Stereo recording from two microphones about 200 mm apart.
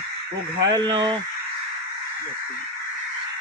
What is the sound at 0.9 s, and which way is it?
Speech, 25° right (ahead or behind).